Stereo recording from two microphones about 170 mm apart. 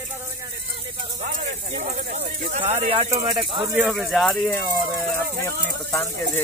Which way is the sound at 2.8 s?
40° right (ahead or behind).